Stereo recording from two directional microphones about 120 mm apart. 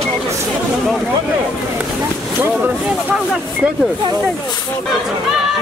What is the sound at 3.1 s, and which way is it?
Speech, 5° right (ahead or behind).